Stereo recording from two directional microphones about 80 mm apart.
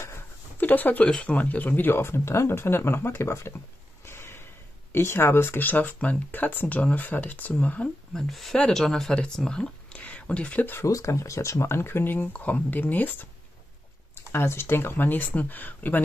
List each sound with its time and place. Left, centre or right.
0.6 s speech: left
4.0 s snort: left
4.9 s speech: left
8.1 s speech: centre; by 10.8 s left
10.8 s speech: left